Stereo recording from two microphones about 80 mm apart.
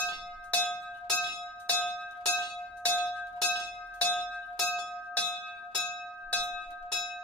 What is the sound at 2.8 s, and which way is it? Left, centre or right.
Bell, centre.